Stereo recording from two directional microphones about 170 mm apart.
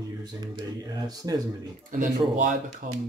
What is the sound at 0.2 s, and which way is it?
Speech, 25° right (ahead or behind).